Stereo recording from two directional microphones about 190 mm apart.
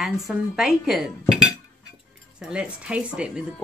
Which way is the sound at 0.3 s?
Centre (ahead or behind).